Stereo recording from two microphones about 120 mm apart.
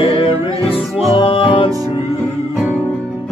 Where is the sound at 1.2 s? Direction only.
45° left (ahead or behind).